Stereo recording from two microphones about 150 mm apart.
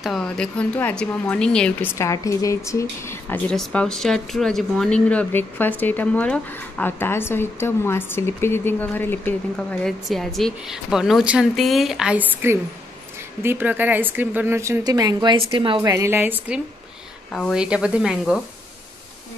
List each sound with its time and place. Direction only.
0.0 s speech: 5° left (ahead or behind)
2.0 s a woman's voice: 20° left (ahead or behind)
3.5 s a woman's voice: 5° left (ahead or behind); by 15.8 s 35° right (ahead or behind)
15.8 s a woman's voice: 20° right (ahead or behind)
17.3 s speech: 5° left (ahead or behind)
17.6 s speech: 5° right (ahead or behind)